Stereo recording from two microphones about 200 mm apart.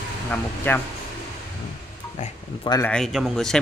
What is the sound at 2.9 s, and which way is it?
Speech, centre (ahead or behind).